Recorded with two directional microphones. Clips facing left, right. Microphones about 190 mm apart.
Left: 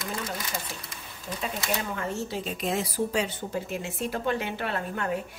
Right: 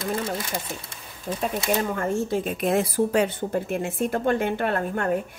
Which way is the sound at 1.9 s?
50° right (ahead or behind).